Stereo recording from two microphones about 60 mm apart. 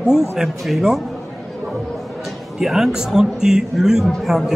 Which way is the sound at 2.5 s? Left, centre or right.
Centre.